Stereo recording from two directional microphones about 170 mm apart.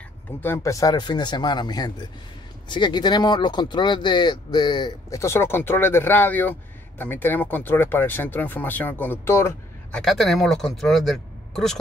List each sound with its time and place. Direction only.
0.4 s speech: 15° left (ahead or behind)
9.9 s speech: centre (ahead or behind)